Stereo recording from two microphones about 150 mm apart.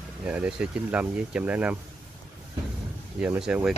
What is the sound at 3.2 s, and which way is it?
Speech, 10° right (ahead or behind).